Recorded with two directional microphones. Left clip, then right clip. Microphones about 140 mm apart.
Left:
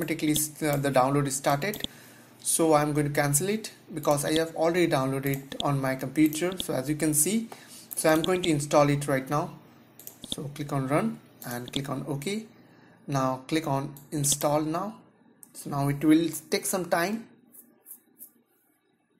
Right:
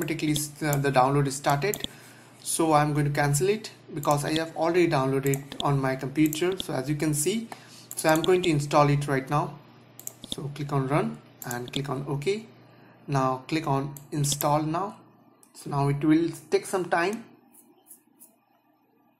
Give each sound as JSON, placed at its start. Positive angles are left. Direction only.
{"t": 0.0, "sound": "speech", "side_deg": 40}